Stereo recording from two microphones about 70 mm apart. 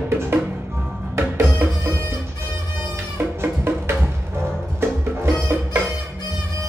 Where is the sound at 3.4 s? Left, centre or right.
Right.